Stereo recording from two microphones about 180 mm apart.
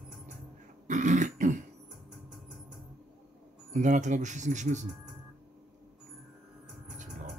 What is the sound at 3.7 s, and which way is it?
Speech, 45° right (ahead or behind).